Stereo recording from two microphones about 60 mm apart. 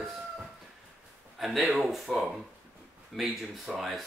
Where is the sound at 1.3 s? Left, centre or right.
Centre.